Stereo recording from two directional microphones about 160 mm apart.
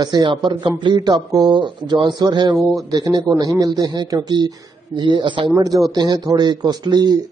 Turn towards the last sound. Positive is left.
turn(degrees=-25)  # may be behind; listen again after turning